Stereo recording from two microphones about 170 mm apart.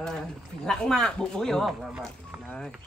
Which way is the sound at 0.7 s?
5° left (ahead or behind).